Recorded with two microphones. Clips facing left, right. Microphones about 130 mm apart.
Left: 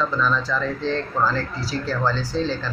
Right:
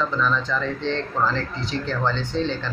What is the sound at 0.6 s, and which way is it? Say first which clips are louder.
Speech: left 1 dB; 35° left (ahead or behind).